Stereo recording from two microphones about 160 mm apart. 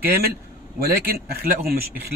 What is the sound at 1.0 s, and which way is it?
Speech, 65° right (ahead or behind).